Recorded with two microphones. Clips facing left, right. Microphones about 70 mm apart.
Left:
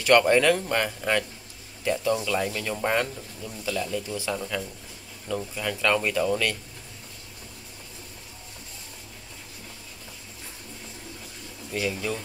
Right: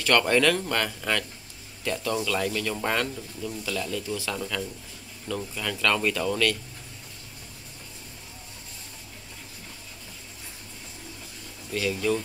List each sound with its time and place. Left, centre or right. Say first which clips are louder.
0.0 s speech: left 3 dB; centre
11.7 s speech: right 3 dB; centre